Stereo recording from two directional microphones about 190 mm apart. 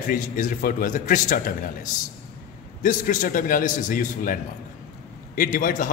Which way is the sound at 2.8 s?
45° left (ahead or behind).